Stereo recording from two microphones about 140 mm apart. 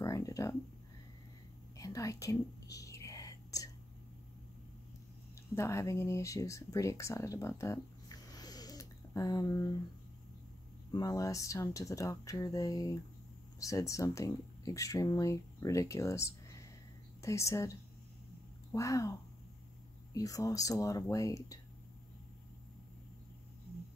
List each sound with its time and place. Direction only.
0.0 s a sound: 25° left (ahead or behind)
1.8 s whispering: 25° left (ahead or behind)
5.5 s speech: 20° left (ahead or behind)
10.9 s speech: 25° left (ahead or behind)
20.2 s speech: 25° left (ahead or behind)